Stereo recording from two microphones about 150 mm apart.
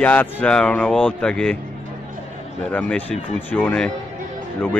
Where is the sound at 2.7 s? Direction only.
10° left (ahead or behind).